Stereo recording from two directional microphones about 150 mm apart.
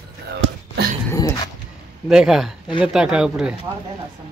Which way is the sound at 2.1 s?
5° right (ahead or behind).